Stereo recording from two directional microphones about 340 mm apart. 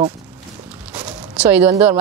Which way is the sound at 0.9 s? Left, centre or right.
Centre.